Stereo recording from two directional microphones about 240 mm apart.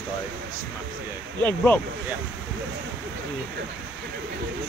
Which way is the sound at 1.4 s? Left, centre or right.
Centre.